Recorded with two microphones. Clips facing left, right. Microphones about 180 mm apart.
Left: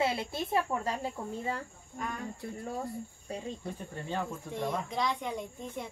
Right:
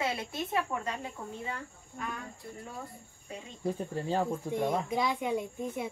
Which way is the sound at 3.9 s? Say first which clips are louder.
Right 3 dB; 35° right (ahead or behind).